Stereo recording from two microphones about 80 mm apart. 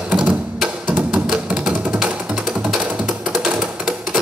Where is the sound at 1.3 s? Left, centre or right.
Centre.